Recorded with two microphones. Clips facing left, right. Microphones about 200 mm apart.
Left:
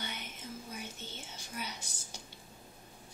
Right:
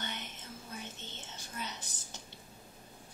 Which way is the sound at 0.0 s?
10° left (ahead or behind).